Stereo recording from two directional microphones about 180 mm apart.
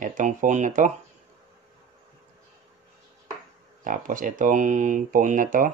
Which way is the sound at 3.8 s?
50° right (ahead or behind).